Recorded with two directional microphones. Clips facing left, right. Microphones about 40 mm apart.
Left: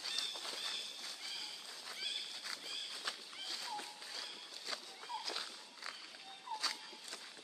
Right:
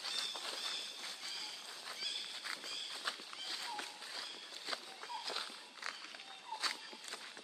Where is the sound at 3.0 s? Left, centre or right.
Centre.